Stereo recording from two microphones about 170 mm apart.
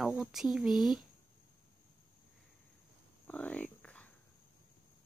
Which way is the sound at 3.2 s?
10° left (ahead or behind).